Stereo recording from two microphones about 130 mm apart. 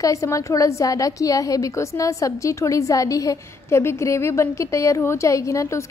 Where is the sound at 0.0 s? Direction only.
25° left (ahead or behind).